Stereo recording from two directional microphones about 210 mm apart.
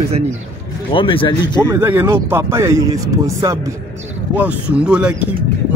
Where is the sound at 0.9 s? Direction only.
25° left (ahead or behind).